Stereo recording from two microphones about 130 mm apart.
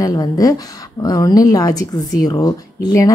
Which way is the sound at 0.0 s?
30° left (ahead or behind).